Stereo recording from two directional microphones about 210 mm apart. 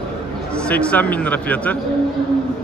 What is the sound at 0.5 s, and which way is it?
A man's voice, 5° left (ahead or behind).